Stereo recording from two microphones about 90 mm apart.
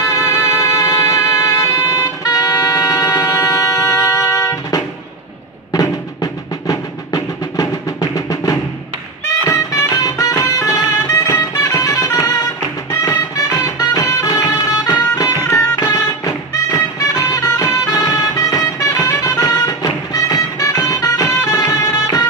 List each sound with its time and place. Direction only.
0.0 s music: 35° left (ahead or behind)
5.7 s music: 40° left (ahead or behind)